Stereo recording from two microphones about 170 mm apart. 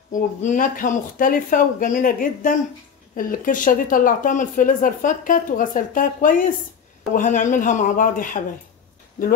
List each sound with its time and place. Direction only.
0.1 s a woman's voice: 50° left (ahead or behind)